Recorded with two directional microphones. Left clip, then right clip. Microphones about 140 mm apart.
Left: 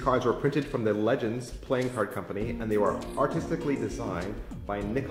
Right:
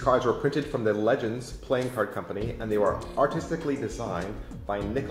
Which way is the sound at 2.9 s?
20° left (ahead or behind).